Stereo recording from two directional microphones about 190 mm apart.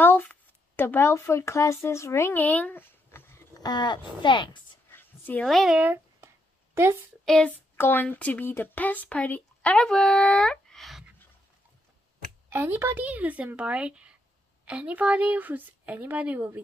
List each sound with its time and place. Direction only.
0.0 s speech: 10° left (ahead or behind)
4.9 s a sound: 10° left (ahead or behind); by 7.0 s 15° right (ahead or behind)
7.2 s speech: 5° left (ahead or behind)
12.5 s speech: 10° right (ahead or behind)